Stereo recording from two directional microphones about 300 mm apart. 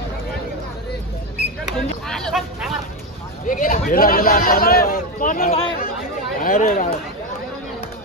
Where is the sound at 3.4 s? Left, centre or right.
Left.